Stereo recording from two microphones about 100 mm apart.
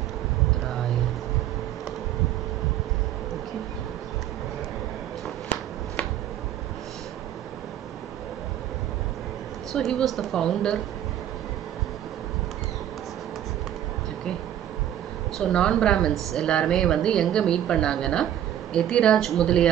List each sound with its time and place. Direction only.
9.7 s a woman's voice: 5° left (ahead or behind)
15.3 s a woman's voice: 5° left (ahead or behind)